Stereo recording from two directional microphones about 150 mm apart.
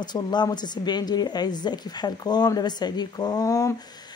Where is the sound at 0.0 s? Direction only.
30° left (ahead or behind).